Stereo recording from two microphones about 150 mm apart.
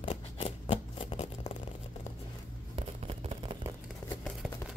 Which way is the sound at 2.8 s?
40° right (ahead or behind).